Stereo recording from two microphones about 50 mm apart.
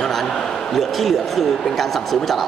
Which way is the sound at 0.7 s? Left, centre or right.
Centre.